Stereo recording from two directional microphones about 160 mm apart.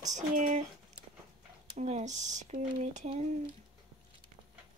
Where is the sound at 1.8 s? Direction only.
45° right (ahead or behind).